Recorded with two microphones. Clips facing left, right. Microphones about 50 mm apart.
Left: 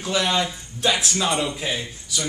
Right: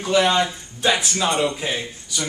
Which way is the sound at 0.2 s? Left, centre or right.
Right.